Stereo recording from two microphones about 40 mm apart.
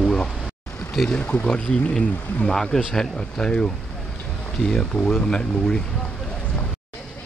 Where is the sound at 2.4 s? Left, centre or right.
Centre.